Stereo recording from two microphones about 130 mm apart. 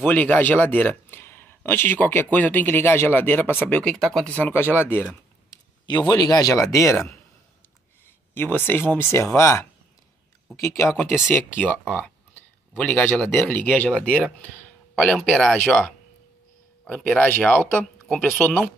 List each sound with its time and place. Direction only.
0.0 s speech: 15° left (ahead or behind)
6.0 s speech: 30° left (ahead or behind)
12.7 s speech: 10° left (ahead or behind)